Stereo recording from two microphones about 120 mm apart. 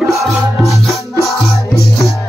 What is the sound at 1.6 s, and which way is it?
Music, 25° left (ahead or behind).